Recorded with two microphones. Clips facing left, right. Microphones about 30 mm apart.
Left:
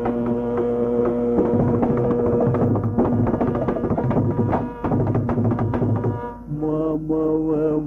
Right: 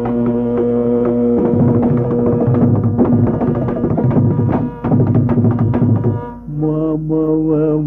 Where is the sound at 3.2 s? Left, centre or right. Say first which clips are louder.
Right 5 dB; centre.